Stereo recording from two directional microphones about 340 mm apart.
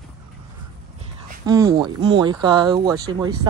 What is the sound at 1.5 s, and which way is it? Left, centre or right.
Speech, centre.